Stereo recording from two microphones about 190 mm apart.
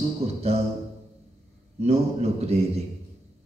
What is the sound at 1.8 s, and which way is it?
A man's voice, 35° right (ahead or behind).